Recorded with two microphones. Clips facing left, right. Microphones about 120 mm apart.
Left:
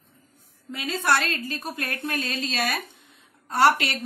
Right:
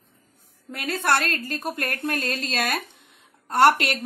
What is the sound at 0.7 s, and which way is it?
A woman's voice, 55° right (ahead or behind).